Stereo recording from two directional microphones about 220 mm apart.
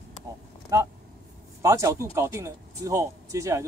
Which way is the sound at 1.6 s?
15° right (ahead or behind).